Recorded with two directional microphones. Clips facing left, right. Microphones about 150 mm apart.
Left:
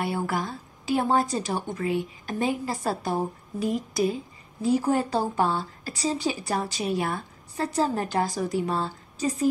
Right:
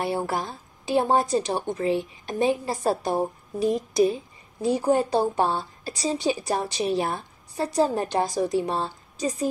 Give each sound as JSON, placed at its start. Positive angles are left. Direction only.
{"t": 0.0, "sound": "speech", "side_deg": -30}
{"t": 7.6, "sound": "speech", "side_deg": -15}